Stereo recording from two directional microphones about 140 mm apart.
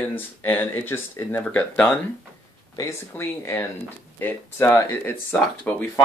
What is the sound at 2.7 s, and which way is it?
Speech, 25° left (ahead or behind).